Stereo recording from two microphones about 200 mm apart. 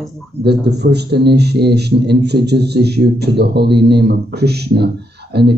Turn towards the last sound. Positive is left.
turn(degrees=-55)  # may be behind; listen again after turning